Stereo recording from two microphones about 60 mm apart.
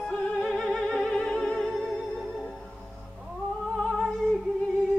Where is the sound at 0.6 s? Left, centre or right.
Centre.